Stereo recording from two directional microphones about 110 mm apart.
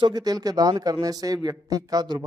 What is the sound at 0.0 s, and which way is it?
Speech, 35° right (ahead or behind).